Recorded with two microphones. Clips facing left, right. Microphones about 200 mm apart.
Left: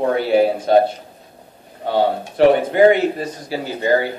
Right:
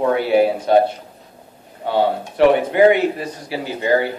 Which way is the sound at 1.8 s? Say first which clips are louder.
Even; 40° left (ahead or behind).